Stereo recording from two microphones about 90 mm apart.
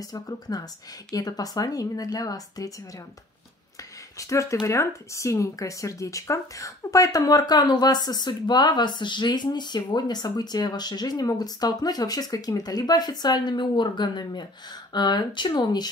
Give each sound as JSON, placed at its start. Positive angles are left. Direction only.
{"t": 0.0, "sound": "speech", "side_deg": 45}
{"t": 4.2, "sound": "speech", "side_deg": 35}